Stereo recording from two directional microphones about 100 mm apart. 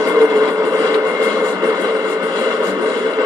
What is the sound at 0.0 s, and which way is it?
Vehicle, 35° right (ahead or behind).